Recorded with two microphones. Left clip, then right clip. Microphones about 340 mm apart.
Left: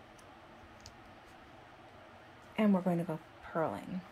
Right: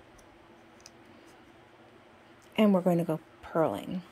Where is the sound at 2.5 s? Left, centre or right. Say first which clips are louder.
Right 7 dB; right.